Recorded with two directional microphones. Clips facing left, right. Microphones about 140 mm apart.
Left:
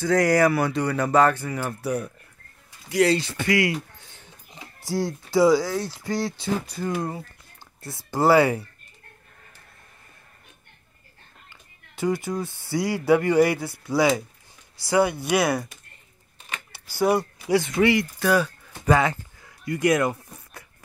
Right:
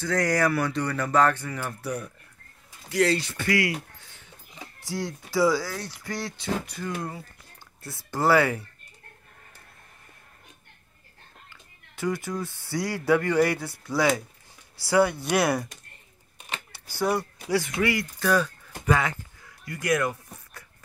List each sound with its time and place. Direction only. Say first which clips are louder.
0.0 s speech: left 5 dB; 10° left (ahead or behind)
4.7 s speech: left 6 dB; 35° left (ahead or behind)
5.3 s speech: left 5 dB; 20° left (ahead or behind)
11.9 s speech: left 4 dB; 20° left (ahead or behind)
15.0 s speech: left 2 dB; 15° left (ahead or behind)
15.3 s speech: left 2 dB; centre (ahead or behind)
16.9 s speech: left 5 dB; 15° left (ahead or behind)
18.9 s speech: left 4 dB; 30° left (ahead or behind)
19.6 s a sound: left 5 dB; 25° left (ahead or behind)